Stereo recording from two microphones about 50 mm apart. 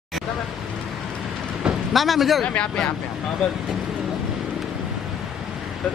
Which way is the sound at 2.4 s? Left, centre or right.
Left.